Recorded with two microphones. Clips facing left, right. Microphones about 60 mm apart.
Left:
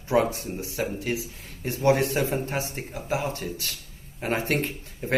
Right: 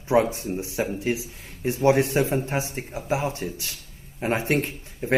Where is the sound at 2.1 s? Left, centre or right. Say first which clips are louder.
Right 3 dB; centre.